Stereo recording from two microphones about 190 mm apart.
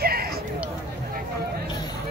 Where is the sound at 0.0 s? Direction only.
55° right (ahead or behind).